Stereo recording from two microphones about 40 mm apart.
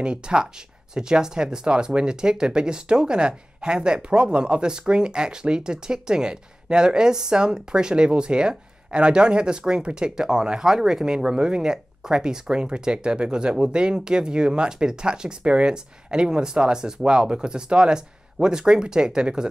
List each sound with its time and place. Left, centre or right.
0.0 s speech: right